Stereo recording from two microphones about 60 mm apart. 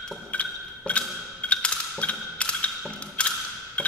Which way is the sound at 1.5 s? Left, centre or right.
Centre.